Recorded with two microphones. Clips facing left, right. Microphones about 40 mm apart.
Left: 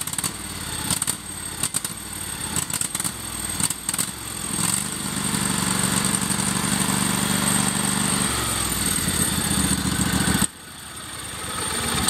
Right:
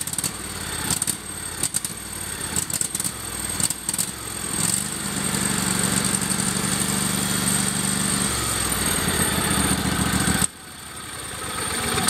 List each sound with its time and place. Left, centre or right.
5.0 s vehicle: centre
8.7 s vehicle: centre
10.1 s vehicle: centre
11.5 s vehicle: centre